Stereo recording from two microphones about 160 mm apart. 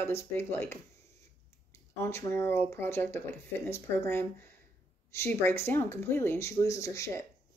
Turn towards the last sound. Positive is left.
turn(degrees=20)  # may be behind; listen again after turning